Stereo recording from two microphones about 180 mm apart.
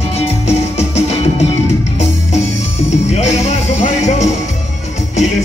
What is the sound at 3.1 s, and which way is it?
Music, 40° left (ahead or behind).